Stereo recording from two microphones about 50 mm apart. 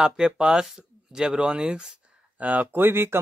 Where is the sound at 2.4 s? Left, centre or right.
Right.